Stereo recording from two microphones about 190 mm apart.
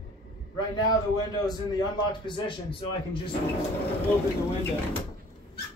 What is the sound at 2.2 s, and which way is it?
Speech, 25° left (ahead or behind).